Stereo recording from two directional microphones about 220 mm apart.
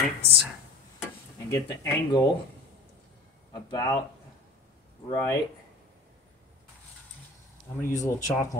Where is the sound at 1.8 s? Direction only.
20° left (ahead or behind).